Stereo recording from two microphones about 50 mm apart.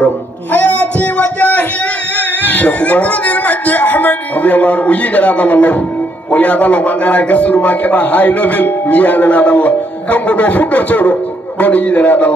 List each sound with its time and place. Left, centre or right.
0.0 s music: left
2.1 s a sound: left
6.3 s a man's voice: left